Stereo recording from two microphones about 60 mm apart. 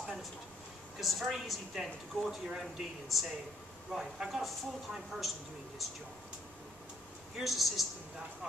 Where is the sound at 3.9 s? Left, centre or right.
Centre.